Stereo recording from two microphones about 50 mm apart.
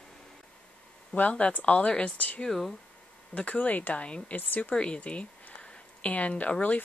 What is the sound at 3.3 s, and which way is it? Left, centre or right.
Speech, left.